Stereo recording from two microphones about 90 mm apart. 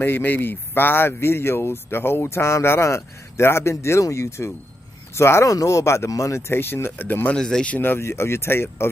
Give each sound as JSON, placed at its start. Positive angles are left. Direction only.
{"t": 0.0, "sound": "speech", "side_deg": 20}
{"t": 7.3, "sound": "speech", "side_deg": 5}
{"t": 7.7, "sound": "speech", "side_deg": 25}